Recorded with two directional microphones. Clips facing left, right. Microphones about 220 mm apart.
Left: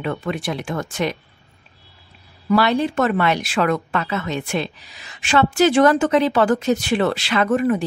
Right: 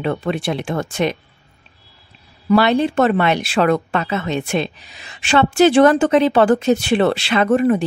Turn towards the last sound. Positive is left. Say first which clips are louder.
# right 3 dB
turn(degrees=-30)  # may be behind; listen again after turning